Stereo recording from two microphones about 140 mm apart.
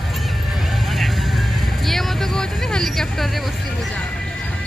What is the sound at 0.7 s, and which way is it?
Vehicle, centre (ahead or behind).